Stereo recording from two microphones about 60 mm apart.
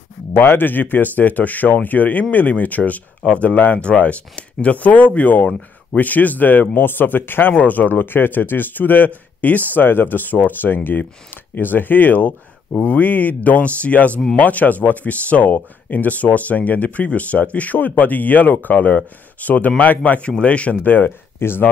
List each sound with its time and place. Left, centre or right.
0.3 s speech: left; by 3.4 s centre
3.4 s speech: left
21.4 s speech: left